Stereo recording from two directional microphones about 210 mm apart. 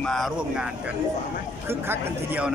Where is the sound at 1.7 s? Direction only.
10° right (ahead or behind).